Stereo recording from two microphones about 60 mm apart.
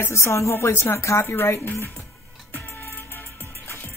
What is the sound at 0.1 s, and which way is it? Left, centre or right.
A woman's voice, left.